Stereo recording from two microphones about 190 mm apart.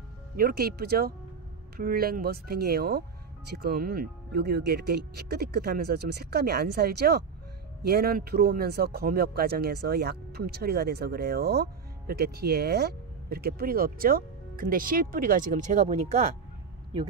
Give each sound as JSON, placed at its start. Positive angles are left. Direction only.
{"t": 0.4, "sound": "speech", "side_deg": -50}